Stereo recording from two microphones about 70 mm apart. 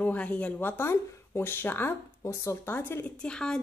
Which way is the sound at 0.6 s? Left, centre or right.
Left.